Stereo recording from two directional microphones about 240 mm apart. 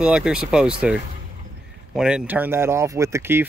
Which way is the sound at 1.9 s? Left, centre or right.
Centre.